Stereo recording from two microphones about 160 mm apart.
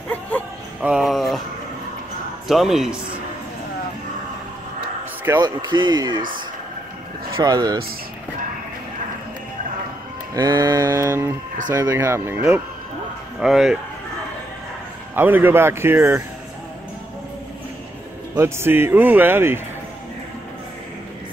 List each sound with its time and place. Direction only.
0.7 s a sound: 5° right (ahead or behind)
2.4 s speech: centre (ahead or behind)
5.4 s mantra: 25° right (ahead or behind)
7.3 s mantra: 25° right (ahead or behind)
10.3 s mantra: 25° right (ahead or behind)
11.7 s speech: 15° right (ahead or behind)
13.4 s speech: centre (ahead or behind)
15.1 s speech: 10° right (ahead or behind)
18.3 s speech: 15° right (ahead or behind)